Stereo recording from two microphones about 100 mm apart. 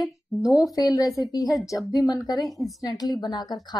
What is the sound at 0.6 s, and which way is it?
A woman's voice, 40° left (ahead or behind).